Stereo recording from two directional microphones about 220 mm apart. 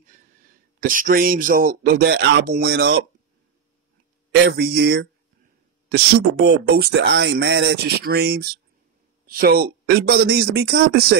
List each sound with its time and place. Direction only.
0.7 s speech: 40° right (ahead or behind)
4.3 s speech: 45° right (ahead or behind)